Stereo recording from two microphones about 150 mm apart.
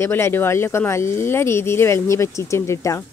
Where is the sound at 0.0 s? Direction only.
15° left (ahead or behind).